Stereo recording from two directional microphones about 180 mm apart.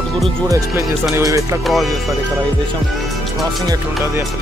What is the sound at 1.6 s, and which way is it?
Speech, centre (ahead or behind).